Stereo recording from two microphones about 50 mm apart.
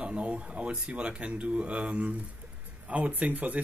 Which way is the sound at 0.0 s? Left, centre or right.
Right.